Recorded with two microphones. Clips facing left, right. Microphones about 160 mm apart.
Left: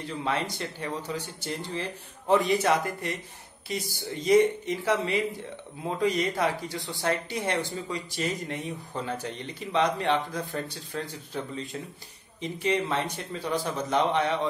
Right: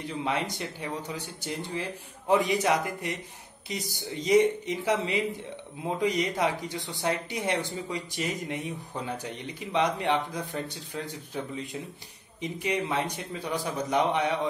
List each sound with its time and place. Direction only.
0.0 s speech: 15° right (ahead or behind)